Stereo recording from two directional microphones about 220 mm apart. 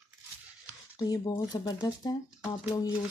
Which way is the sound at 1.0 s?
15° left (ahead or behind).